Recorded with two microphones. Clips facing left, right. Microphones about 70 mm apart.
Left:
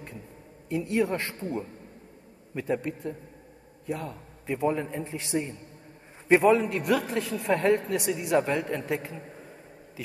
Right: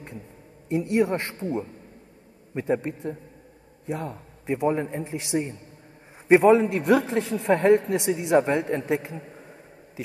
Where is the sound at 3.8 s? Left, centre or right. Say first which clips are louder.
Right 2 dB; right.